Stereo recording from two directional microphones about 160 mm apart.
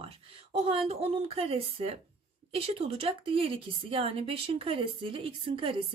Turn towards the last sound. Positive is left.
turn(degrees=-30)  # may be behind; listen again after turning